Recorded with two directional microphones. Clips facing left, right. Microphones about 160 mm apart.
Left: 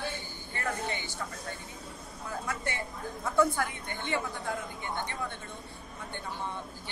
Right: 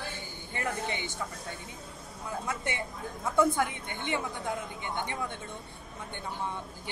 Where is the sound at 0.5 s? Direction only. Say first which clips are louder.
Right 1 dB; 20° right (ahead or behind).